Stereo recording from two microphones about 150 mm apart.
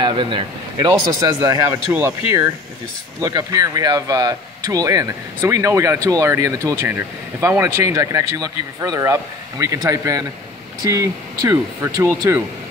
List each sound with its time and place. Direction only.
0.0 s speech: 35° right (ahead or behind)